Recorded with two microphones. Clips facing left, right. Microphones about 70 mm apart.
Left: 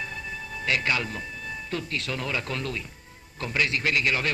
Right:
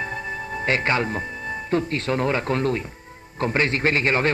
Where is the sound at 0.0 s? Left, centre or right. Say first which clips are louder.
Right 6 dB; right.